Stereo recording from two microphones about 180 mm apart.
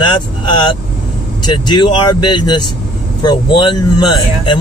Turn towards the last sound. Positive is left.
turn(degrees=25)  # may be behind; listen again after turning